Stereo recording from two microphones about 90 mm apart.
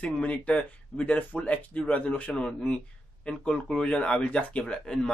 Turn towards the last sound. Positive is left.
turn(degrees=10)  # may be behind; listen again after turning